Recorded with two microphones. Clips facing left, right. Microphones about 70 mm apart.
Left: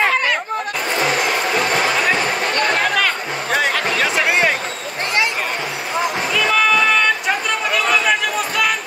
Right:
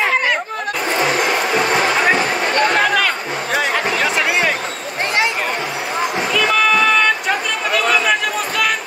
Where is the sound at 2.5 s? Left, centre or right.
Right.